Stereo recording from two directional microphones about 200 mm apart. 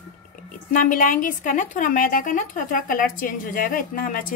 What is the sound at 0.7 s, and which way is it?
A woman's voice, 40° left (ahead or behind).